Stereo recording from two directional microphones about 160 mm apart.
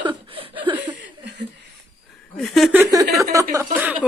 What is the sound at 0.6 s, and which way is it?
Chuckle, 10° right (ahead or behind).